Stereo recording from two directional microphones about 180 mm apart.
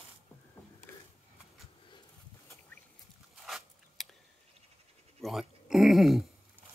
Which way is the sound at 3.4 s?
Centre (ahead or behind).